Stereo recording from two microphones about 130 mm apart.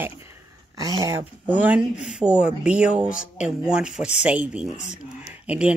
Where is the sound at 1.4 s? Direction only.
10° right (ahead or behind).